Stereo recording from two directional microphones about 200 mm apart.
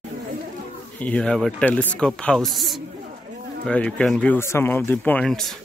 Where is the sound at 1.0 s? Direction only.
5° left (ahead or behind).